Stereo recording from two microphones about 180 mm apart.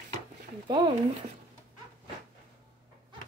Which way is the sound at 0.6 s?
25° right (ahead or behind).